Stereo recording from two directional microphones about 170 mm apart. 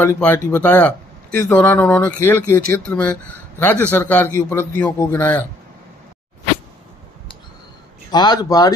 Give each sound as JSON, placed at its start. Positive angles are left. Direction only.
{"t": 0.0, "sound": "speech", "side_deg": 10}
{"t": 8.1, "sound": "speech", "side_deg": 25}